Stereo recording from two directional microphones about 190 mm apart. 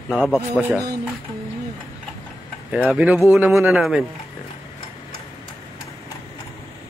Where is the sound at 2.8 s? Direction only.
5° right (ahead or behind).